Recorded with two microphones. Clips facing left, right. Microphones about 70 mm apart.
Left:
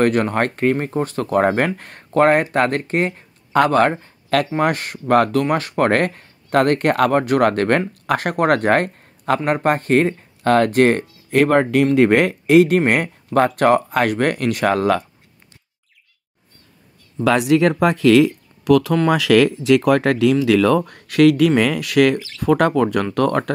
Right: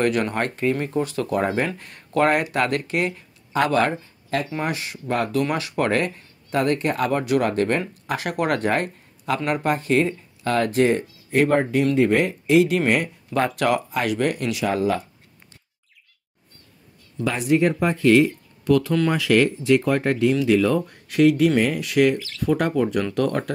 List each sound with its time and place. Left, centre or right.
0.0 s speech: left
5.4 s speech: left
11.8 s speech: left
17.2 s speech: left